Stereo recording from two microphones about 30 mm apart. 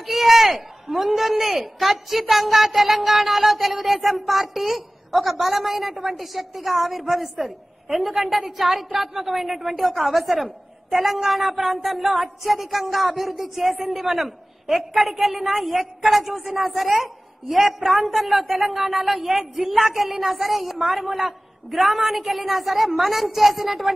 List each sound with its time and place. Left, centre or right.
0.0 s a woman's voice: centre